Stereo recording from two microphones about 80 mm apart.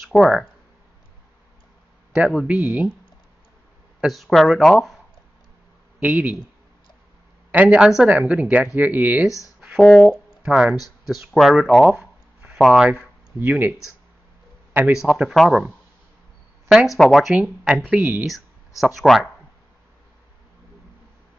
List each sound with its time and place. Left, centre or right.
0.0 s speech: centre
2.1 s a man's voice: centre
4.1 s speech: centre
5.9 s speech: centre
7.5 s a man's voice: centre
9.8 s speech: centre
10.1 s speech: centre
12.8 s speech: centre
13.4 s speech: right
15.0 s speech: centre
17.0 s speech: centre
17.3 s a man's voice: centre
18.9 s speech: centre